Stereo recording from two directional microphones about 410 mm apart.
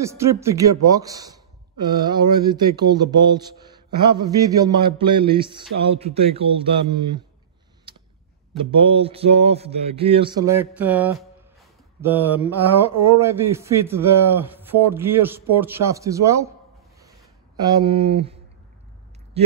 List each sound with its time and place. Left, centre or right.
0.0 s a man's voice: centre
8.5 s a man's voice: centre
17.6 s a man's voice: centre